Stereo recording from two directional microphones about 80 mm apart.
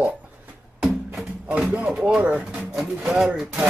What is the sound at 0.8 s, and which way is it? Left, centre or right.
Music, centre.